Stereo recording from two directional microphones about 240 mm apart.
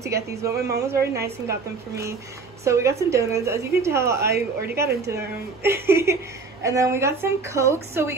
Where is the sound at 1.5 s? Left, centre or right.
Centre.